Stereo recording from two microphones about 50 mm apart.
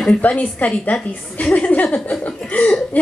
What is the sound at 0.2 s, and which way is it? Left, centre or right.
A woman's voice, left.